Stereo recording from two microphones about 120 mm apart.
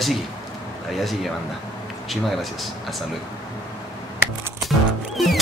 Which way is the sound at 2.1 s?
Centre (ahead or behind).